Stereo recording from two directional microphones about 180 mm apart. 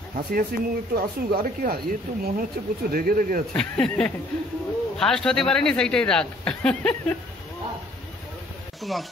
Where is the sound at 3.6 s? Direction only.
5° left (ahead or behind).